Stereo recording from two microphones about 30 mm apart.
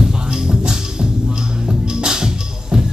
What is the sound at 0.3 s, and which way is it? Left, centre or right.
Music, right.